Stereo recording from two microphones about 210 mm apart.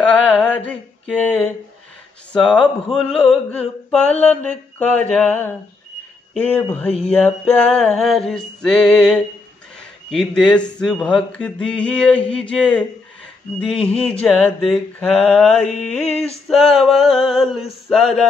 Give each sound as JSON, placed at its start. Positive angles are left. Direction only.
{"t": 0.0, "sound": "a sound", "side_deg": 5}
{"t": 2.3, "sound": "speech", "side_deg": 5}
{"t": 15.6, "sound": "mantra", "side_deg": 35}
{"t": 16.4, "sound": "speech", "side_deg": 0}